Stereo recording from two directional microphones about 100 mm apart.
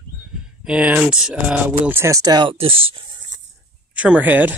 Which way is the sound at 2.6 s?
70° right (ahead or behind).